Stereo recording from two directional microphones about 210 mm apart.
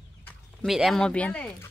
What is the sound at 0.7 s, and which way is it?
Speech, centre (ahead or behind).